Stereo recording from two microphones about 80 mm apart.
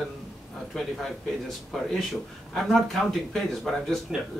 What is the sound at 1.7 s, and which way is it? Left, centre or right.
Speech, centre.